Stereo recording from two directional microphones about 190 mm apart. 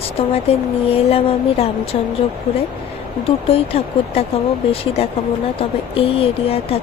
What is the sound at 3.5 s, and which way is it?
Speech, 30° left (ahead or behind).